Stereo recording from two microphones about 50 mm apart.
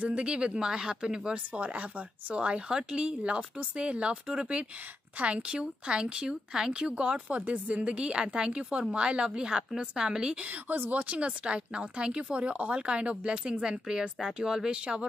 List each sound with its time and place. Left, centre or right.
0.0 s a woman's voice: right
10.4 s speech: right
11.1 s speech: right